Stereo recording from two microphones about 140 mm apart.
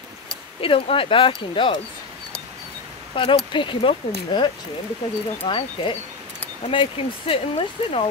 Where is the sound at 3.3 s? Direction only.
35° left (ahead or behind).